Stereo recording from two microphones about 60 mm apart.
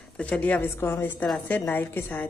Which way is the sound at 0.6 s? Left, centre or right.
Left.